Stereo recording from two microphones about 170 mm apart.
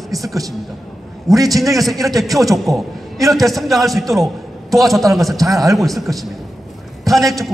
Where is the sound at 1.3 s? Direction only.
20° right (ahead or behind).